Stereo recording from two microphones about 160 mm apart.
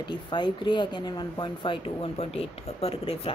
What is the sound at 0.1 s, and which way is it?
Speech, 30° left (ahead or behind).